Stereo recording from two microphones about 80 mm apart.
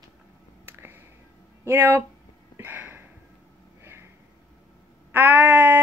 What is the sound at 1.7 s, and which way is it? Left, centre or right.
Speech, right.